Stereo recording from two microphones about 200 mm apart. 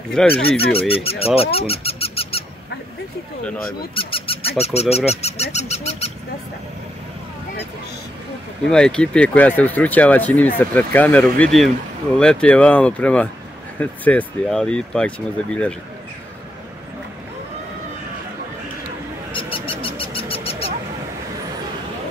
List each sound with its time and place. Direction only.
0.2 s speech: 5° left (ahead or behind)
0.7 s speech: 30° left (ahead or behind)
3.9 s goose: 25° left (ahead or behind)
8.6 s speech: 5° left (ahead or behind)
19.3 s bird: 25° left (ahead or behind)